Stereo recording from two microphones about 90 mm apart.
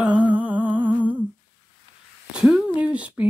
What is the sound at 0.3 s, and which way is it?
Humming, 20° right (ahead or behind).